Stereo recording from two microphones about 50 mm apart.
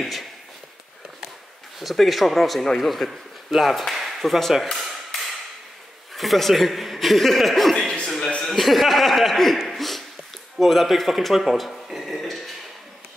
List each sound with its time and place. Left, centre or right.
0.0 s speech: centre
1.8 s speech: centre
7.7 s a sound: centre
8.4 s speech: centre
9.7 s a sound: centre
10.6 s speech: centre